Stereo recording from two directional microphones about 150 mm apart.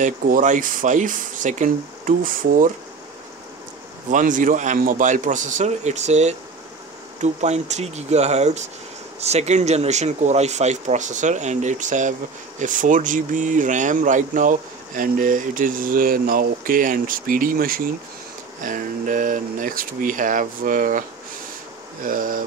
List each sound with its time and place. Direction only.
0.0 s speech: 60° right (ahead or behind)
4.1 s speech: 60° right (ahead or behind)
18.6 s speech: 60° right (ahead or behind)
22.0 s speech: 65° right (ahead or behind)